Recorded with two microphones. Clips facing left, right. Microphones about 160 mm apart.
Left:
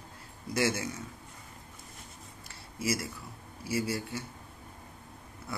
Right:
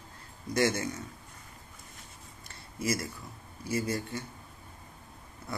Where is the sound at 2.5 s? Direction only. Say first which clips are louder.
Right 1 dB; 5° left (ahead or behind).